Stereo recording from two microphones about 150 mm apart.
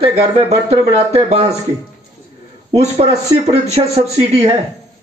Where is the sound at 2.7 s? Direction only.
45° right (ahead or behind).